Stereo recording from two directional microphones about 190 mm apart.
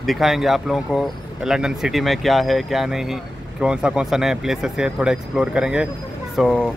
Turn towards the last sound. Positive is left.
turn(degrees=5)  # may be behind; listen again after turning